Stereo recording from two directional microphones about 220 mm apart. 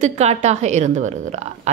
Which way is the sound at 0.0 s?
30° right (ahead or behind).